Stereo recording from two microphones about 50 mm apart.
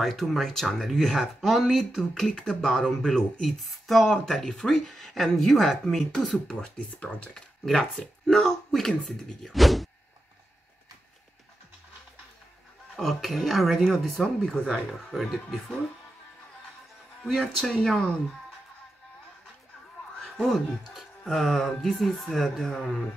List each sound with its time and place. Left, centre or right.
0.0 s speech: centre
6.5 s speech: centre
9.5 s speech: centre
12.9 s speech: centre
15.1 s speech: centre
17.2 s speech: centre
20.2 s speech: centre